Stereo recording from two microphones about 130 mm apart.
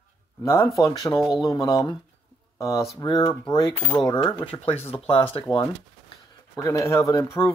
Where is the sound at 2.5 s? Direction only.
25° left (ahead or behind).